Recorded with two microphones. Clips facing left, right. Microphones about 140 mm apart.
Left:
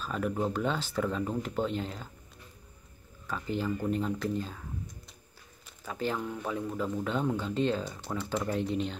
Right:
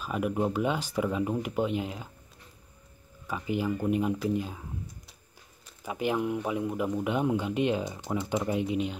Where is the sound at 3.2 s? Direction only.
10° right (ahead or behind).